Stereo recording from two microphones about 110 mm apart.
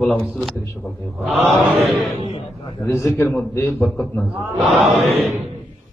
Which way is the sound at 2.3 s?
60° left (ahead or behind).